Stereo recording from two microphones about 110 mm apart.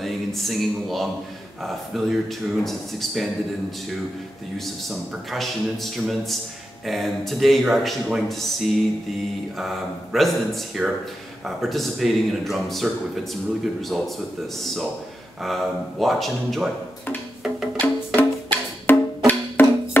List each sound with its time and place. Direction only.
0.0 s speech: centre (ahead or behind)
4.8 s speech: centre (ahead or behind)
15.4 s speech: centre (ahead or behind)
17.7 s music: 15° left (ahead or behind)